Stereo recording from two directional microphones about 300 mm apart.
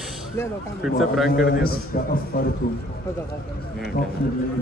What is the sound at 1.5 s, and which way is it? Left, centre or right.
Speech, left.